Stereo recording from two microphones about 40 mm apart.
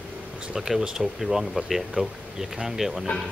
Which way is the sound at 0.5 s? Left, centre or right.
Centre.